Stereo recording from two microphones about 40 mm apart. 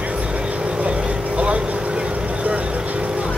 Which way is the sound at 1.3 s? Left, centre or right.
Right.